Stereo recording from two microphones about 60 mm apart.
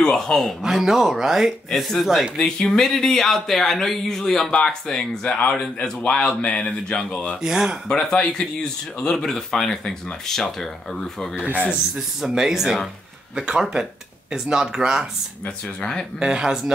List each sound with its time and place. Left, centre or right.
0.0 s speech: centre
0.6 s speech: centre
2.3 s speech: centre
5.2 s speech: left
5.5 s speech: centre
7.4 s speech: centre
7.9 s speech: centre
12.3 s speech: centre
15.4 s speech: centre
16.2 s speech: centre